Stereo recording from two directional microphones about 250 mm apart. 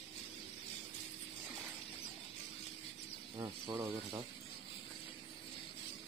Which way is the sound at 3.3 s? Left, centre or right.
Centre.